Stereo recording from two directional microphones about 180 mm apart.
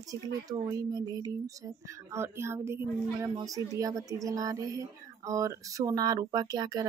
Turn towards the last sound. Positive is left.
turn(degrees=-20)  # may be behind; listen again after turning